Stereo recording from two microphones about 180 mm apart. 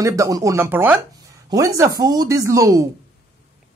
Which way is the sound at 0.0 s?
20° right (ahead or behind).